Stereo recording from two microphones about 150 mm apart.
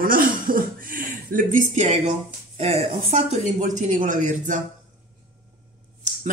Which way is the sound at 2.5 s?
40° right (ahead or behind).